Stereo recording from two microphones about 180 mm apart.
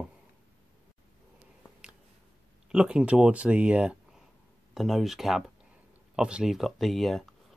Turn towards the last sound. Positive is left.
turn(degrees=0)  # may be behind; listen again after turning